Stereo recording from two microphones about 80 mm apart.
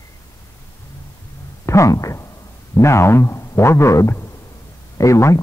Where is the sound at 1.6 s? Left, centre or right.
Left.